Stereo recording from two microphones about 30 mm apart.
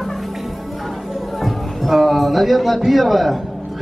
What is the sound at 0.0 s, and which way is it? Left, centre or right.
Music, centre.